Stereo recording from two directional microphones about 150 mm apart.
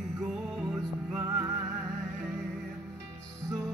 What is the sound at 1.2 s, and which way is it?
Music, 15° right (ahead or behind).